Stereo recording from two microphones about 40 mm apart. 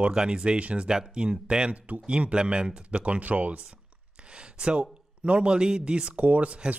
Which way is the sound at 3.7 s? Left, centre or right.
Right.